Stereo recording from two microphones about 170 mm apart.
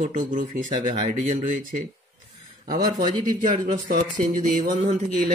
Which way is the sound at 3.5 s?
45° right (ahead or behind).